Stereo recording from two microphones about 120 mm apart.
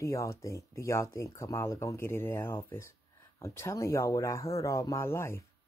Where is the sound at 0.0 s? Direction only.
25° left (ahead or behind).